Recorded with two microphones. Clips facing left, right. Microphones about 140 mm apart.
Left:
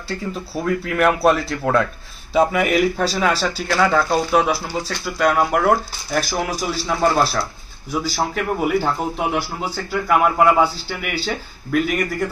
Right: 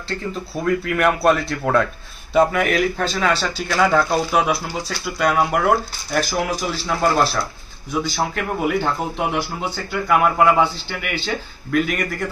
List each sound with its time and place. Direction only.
0.1 s speech: 5° left (ahead or behind)